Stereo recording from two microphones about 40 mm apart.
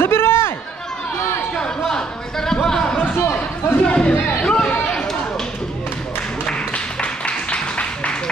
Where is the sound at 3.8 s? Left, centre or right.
Left.